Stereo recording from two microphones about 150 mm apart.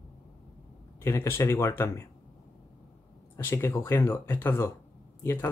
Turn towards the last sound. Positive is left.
turn(degrees=15)  # may be behind; listen again after turning